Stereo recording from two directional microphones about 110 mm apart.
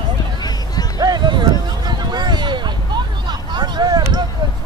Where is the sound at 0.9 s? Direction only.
40° right (ahead or behind).